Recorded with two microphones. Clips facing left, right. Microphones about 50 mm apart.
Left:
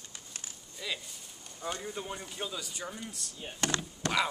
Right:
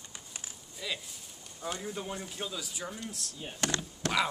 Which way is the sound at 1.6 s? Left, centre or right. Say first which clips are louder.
Even; centre.